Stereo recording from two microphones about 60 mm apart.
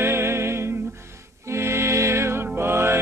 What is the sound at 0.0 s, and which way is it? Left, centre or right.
Music, right.